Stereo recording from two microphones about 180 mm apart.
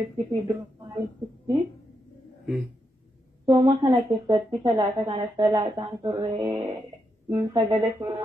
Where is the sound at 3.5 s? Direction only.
25° right (ahead or behind).